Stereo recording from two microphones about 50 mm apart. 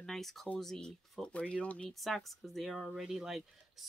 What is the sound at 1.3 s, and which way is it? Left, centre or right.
Speech, left.